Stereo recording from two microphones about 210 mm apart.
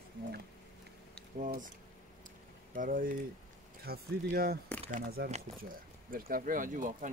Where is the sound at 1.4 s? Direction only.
40° right (ahead or behind).